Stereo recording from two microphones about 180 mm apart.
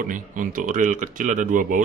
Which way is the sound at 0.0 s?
50° right (ahead or behind).